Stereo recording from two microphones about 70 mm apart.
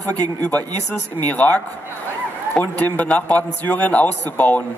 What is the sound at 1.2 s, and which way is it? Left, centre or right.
Speech, left.